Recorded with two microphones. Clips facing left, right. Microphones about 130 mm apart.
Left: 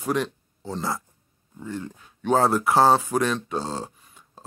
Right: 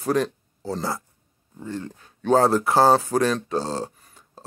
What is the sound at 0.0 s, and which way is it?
Speech, 35° right (ahead or behind).